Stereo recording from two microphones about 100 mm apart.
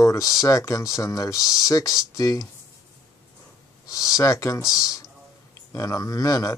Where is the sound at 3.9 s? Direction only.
35° left (ahead or behind).